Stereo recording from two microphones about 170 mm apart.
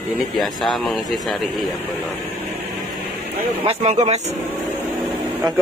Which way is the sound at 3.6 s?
40° right (ahead or behind).